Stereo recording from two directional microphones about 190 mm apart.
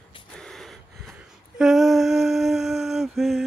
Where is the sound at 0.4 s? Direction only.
5° left (ahead or behind).